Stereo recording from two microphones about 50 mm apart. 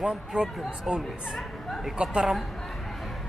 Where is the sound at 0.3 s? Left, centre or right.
Centre.